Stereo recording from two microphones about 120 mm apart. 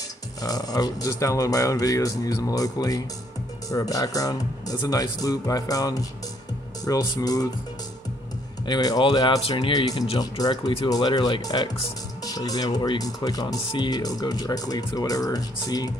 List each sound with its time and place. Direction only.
0.4 s speech: 30° left (ahead or behind)
8.6 s speech: 35° left (ahead or behind)